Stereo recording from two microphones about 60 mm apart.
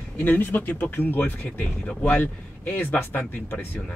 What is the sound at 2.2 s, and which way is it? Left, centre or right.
Speech, left.